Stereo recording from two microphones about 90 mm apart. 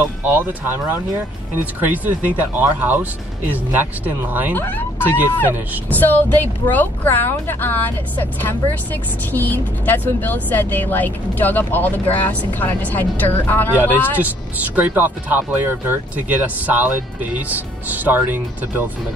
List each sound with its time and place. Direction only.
0.2 s speech: 20° right (ahead or behind)
4.6 s speech: 20° left (ahead or behind)
5.9 s speech: 20° left (ahead or behind)
14.8 s speech: 20° right (ahead or behind)